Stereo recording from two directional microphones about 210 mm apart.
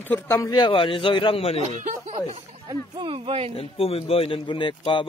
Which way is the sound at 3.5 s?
25° left (ahead or behind).